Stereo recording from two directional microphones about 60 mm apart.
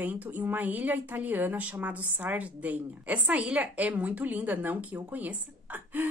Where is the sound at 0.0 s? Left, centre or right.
Right.